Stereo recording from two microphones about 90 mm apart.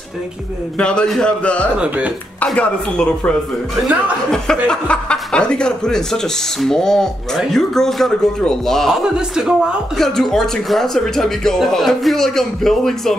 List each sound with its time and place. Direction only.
0.7 s speech: 10° left (ahead or behind)
1.8 s speech: 15° right (ahead or behind)
2.4 s speech: 15° left (ahead or behind)
4.6 s speech: 10° left (ahead or behind)
9.0 s speech: 5° right (ahead or behind)